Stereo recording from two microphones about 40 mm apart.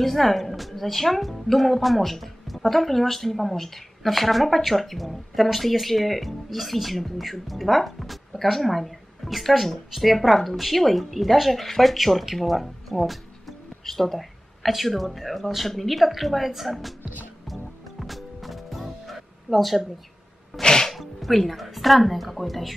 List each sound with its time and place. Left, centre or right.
0.0 s speech: centre
17.5 s music: centre
20.6 s music: centre
20.9 s speech: centre